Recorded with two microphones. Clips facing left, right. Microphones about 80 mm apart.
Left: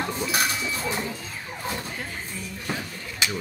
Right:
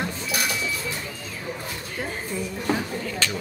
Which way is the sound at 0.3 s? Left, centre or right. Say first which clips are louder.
Left 1 dB; left.